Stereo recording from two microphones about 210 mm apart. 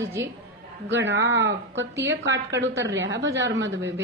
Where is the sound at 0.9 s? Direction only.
55° right (ahead or behind).